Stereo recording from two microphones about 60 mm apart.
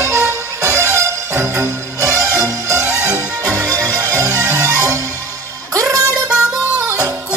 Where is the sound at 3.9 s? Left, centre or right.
Right.